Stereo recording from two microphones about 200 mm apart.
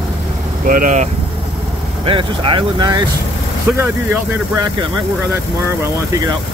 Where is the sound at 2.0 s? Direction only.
25° right (ahead or behind).